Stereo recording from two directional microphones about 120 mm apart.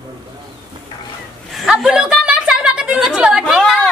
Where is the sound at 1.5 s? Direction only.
Centre (ahead or behind).